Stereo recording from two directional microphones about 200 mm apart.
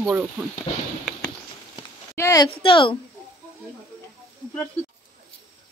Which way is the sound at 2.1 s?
15° left (ahead or behind).